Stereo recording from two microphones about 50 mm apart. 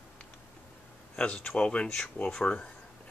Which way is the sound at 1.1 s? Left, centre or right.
Left.